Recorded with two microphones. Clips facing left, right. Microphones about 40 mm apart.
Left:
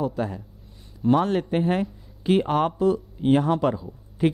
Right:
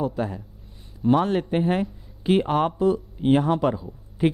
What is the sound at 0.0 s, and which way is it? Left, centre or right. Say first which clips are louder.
Speech: even; centre.